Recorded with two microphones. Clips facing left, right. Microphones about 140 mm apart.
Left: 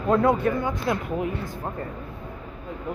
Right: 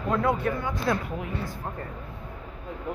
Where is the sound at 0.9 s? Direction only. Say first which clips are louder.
Right 1 dB; 20° left (ahead or behind).